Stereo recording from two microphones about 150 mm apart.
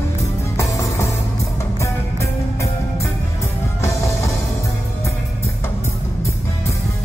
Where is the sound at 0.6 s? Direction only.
20° left (ahead or behind).